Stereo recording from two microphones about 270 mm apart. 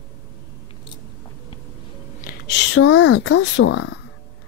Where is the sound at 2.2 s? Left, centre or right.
Left.